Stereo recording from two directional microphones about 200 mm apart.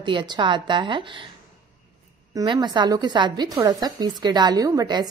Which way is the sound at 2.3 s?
20° right (ahead or behind).